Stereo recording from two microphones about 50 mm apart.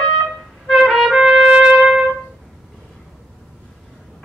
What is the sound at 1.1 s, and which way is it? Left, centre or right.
Trumpet, centre.